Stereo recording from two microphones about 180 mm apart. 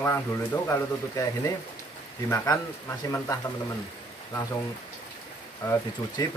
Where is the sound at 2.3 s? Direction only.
15° left (ahead or behind).